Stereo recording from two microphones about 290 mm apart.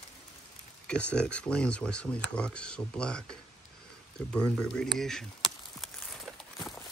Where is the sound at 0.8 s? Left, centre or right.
Centre.